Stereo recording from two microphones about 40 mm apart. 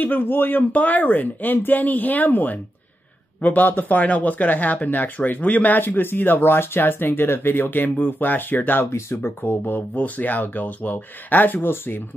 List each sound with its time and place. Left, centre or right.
0.0 s speech: left
5.8 s speech: left
9.1 s speech: left
10.0 s speech: left